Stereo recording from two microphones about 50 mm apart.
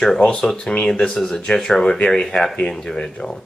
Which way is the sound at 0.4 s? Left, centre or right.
Centre.